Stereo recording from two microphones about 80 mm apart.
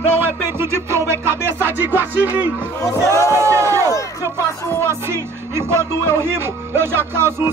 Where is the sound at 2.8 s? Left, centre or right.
Left.